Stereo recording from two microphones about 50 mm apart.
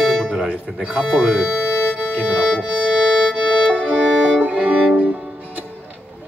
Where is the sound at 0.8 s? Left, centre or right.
Right.